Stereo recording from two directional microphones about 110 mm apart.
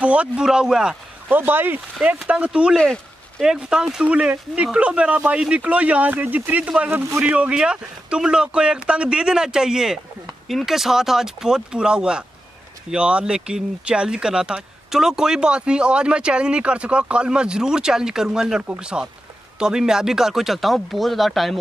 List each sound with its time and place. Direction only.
0.0 s speech: 10° right (ahead or behind)
1.3 s speech: 20° right (ahead or behind)
2.7 s a sound: 5° left (ahead or behind)
3.4 s speech: 5° right (ahead or behind)